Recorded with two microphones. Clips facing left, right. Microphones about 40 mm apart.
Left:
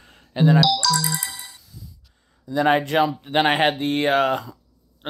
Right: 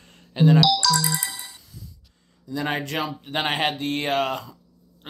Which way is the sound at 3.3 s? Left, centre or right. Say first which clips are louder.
Left 5 dB; left.